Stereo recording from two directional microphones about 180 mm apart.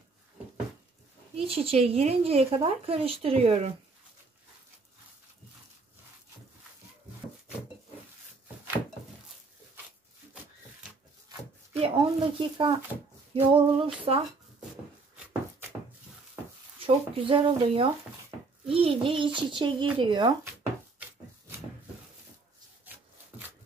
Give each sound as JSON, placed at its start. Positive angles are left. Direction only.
{"t": 1.3, "sound": "speech", "side_deg": -35}
{"t": 11.7, "sound": "speech", "side_deg": -30}
{"t": 16.8, "sound": "a child's voice", "side_deg": -30}